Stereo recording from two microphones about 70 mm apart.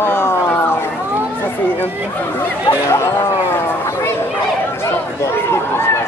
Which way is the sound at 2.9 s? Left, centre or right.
Left.